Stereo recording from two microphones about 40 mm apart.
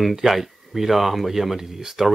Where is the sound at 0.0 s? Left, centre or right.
Centre.